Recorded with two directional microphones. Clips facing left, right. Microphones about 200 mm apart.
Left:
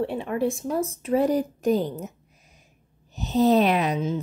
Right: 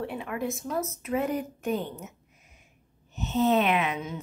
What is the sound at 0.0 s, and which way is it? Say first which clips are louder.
A woman's voice: left 7 dB; 30° left (ahead or behind).